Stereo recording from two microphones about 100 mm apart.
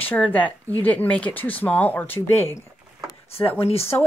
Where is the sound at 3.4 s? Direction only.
75° left (ahead or behind).